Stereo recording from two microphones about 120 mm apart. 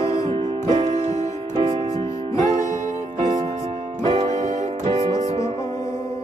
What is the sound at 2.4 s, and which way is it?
Music, 90° right.